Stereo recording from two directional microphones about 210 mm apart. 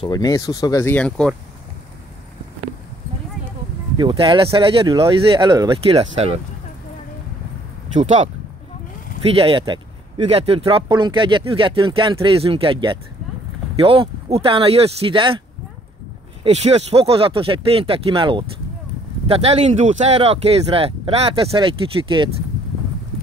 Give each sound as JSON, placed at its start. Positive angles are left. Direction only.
{"t": 0.0, "sound": "speech", "side_deg": 20}
{"t": 3.9, "sound": "speech", "side_deg": -25}
{"t": 7.9, "sound": "speech", "side_deg": -35}
{"t": 9.3, "sound": "speech", "side_deg": -25}
{"t": 16.4, "sound": "speech", "side_deg": -30}